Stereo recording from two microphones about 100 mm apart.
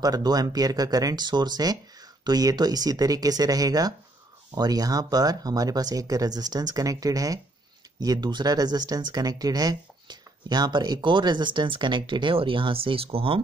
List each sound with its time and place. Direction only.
0.0 s speech: 40° right (ahead or behind); by 13.4 s 70° right (ahead or behind)